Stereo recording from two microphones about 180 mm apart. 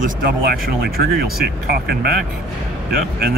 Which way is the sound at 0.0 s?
60° right (ahead or behind).